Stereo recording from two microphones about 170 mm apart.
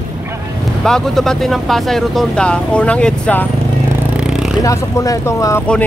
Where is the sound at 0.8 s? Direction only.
5° left (ahead or behind).